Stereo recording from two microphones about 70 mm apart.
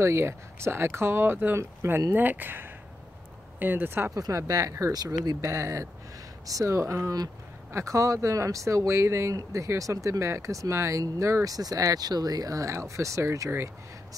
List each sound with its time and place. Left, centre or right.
0.0 s speech: right
4.1 s speech: right
4.9 s speech: right
5.5 s speech: right
9.3 s speech: right